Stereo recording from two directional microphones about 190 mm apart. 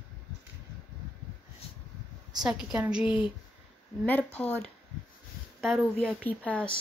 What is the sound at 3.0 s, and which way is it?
Speech, 25° left (ahead or behind).